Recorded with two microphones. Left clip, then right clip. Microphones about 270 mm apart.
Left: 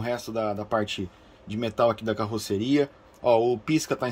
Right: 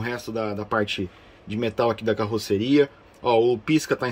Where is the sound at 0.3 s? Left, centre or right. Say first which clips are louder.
Right 2 dB; centre.